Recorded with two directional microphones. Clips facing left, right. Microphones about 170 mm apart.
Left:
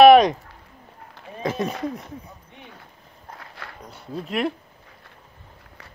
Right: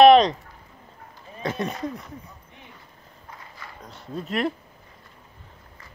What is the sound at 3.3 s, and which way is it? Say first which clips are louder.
Dog: left 3 dB; 70° left (ahead or behind).